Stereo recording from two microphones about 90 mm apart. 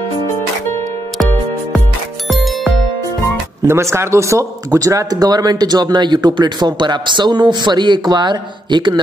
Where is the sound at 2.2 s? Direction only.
Centre (ahead or behind).